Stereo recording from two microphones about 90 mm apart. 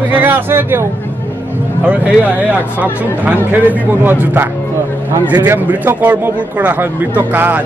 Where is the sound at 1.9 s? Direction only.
15° right (ahead or behind).